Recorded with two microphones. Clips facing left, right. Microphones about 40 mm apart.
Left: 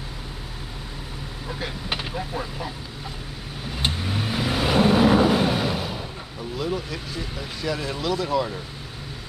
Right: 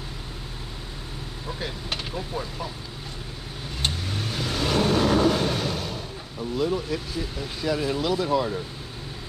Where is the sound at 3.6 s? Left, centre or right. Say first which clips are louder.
Left 3 dB; centre.